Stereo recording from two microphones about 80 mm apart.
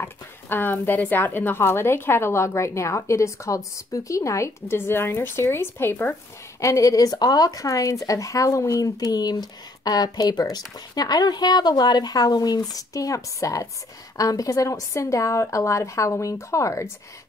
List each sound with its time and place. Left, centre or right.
0.0 s speech: left
6.6 s speech: left